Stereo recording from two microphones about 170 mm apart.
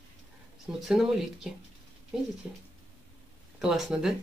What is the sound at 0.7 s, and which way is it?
Speech, centre (ahead or behind).